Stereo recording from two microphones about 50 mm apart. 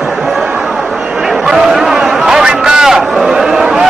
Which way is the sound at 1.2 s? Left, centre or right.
Centre.